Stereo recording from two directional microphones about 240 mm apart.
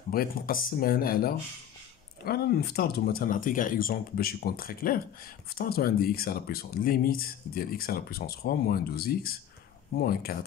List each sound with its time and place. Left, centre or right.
0.1 s speech: left